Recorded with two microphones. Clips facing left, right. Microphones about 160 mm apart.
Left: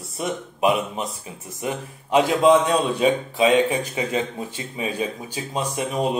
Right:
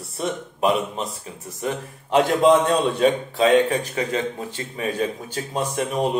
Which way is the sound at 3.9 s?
15° left (ahead or behind).